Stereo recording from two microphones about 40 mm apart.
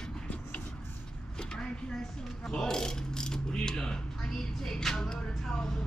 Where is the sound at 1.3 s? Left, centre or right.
Left.